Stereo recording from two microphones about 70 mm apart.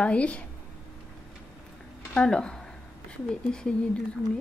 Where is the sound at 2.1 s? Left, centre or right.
Centre.